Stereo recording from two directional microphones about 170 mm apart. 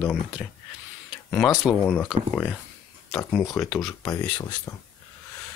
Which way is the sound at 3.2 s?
15° left (ahead or behind).